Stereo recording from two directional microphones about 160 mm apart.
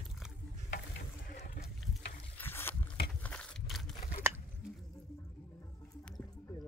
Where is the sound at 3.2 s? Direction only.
5° left (ahead or behind).